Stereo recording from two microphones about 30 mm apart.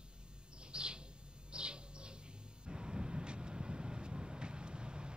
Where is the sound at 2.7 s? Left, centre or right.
Right.